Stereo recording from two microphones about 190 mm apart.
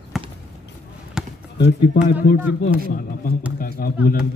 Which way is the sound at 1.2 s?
5° right (ahead or behind).